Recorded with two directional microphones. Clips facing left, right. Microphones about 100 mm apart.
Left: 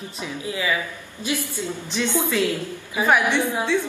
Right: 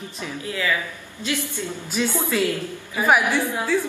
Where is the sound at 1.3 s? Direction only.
20° right (ahead or behind).